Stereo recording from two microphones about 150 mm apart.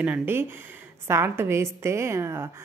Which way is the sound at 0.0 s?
10° right (ahead or behind).